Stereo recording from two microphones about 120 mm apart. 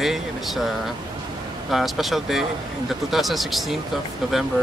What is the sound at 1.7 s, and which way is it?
Speech, centre (ahead or behind).